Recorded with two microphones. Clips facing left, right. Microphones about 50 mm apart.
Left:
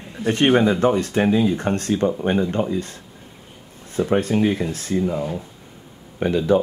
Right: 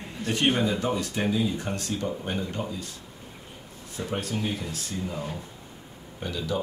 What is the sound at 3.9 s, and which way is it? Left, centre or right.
Speech, left.